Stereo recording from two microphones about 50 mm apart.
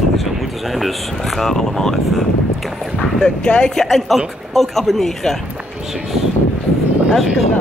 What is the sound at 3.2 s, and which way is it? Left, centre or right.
Speech, left.